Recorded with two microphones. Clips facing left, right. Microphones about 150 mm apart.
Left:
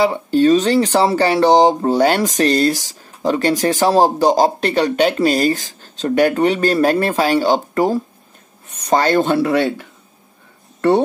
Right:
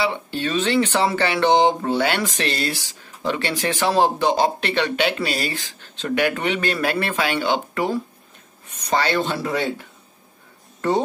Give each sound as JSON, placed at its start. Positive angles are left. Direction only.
{"t": 0.0, "sound": "speech", "side_deg": 40}